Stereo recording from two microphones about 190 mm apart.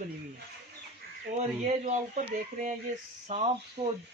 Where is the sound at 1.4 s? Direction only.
35° right (ahead or behind).